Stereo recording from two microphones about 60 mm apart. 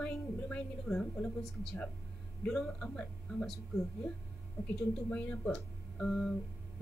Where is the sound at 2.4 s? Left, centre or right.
Centre.